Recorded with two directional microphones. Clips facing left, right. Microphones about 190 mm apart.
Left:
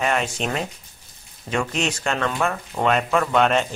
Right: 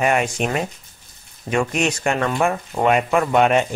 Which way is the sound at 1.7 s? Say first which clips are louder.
Right 4 dB; 10° right (ahead or behind).